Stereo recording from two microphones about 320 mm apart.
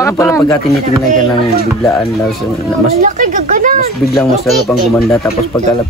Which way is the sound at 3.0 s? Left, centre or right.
Right.